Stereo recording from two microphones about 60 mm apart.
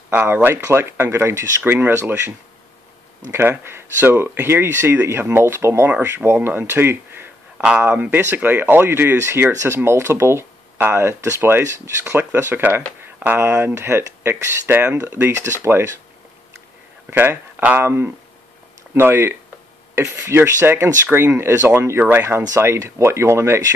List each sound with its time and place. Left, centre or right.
0.3 s speech: right
1.7 s speech: right
3.3 s speech: right
7.5 s speech: centre
8.0 s speech: right
15.2 s speech: right
17.1 s speech: right